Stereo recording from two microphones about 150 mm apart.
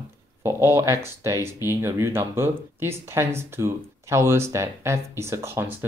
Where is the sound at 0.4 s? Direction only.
15° right (ahead or behind).